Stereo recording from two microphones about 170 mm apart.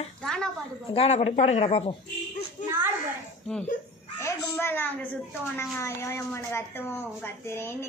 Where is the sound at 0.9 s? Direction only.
35° left (ahead or behind).